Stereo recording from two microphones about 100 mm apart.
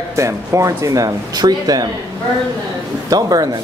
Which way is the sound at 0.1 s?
30° right (ahead or behind).